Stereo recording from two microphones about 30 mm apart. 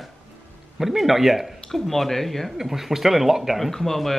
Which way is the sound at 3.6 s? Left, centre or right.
Centre.